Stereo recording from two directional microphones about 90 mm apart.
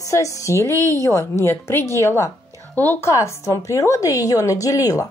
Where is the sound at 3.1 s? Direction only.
35° left (ahead or behind).